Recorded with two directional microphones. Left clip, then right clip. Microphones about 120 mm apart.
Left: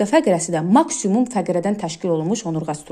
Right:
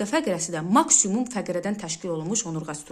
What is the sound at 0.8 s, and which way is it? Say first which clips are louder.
A woman's voice: left 3 dB; 25° left (ahead or behind).